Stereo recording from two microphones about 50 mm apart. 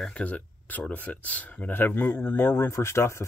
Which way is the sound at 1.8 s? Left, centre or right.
Left.